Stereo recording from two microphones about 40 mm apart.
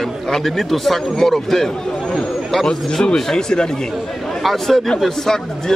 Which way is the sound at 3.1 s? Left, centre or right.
Centre.